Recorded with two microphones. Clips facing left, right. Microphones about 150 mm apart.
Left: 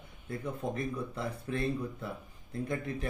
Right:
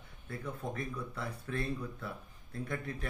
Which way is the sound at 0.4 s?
20° left (ahead or behind).